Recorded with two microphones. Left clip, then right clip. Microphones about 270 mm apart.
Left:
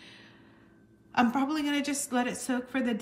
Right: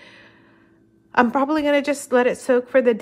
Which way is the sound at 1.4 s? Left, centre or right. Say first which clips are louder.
Right 11 dB; centre.